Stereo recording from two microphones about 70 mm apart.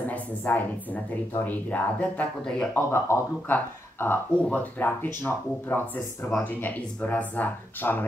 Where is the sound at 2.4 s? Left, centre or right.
Centre.